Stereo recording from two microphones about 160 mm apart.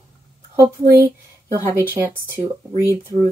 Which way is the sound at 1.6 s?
15° right (ahead or behind).